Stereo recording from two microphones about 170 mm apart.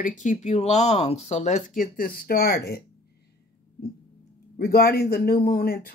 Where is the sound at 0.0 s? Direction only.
50° left (ahead or behind); by 2.8 s 65° left (ahead or behind).